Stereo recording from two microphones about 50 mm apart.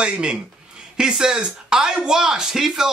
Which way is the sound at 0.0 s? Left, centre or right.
Centre.